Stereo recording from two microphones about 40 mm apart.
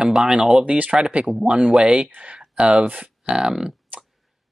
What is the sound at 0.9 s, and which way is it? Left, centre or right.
Speech, right.